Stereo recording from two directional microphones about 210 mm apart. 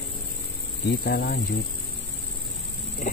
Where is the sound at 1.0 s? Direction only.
45° left (ahead or behind).